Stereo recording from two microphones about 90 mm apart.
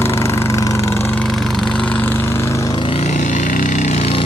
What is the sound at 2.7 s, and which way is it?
Vehicle, 70° left (ahead or behind).